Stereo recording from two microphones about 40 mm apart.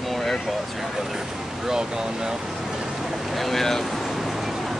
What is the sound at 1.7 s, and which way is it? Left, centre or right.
Speech, centre.